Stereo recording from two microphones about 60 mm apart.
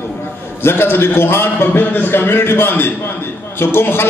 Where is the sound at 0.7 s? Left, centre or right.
Left.